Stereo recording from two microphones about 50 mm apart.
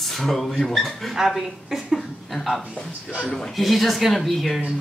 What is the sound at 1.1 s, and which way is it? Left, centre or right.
Speech, centre.